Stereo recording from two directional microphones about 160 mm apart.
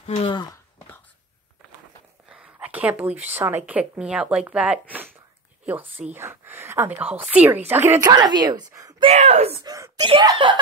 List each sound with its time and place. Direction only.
0.0 s a sound: 35° left (ahead or behind)
2.2 s a woman's voice: 5° right (ahead or behind)
8.0 s speech: 25° right (ahead or behind)
9.0 s speech: 45° right (ahead or behind)
9.6 s speech: 25° right (ahead or behind)